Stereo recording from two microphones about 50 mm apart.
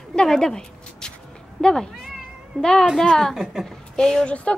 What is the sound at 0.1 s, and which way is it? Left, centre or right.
A woman's voice, centre.